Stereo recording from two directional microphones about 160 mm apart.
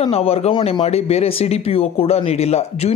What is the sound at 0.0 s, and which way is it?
Speech, 40° left (ahead or behind).